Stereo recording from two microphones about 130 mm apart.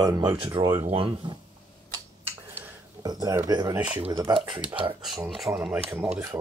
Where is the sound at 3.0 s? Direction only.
30° right (ahead or behind).